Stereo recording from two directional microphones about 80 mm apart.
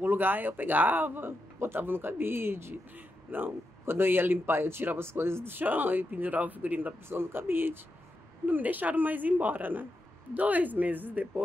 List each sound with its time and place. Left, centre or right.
0.0 s a man's voice: right